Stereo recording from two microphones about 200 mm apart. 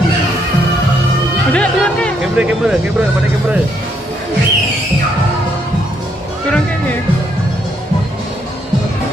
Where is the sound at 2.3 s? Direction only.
5° right (ahead or behind).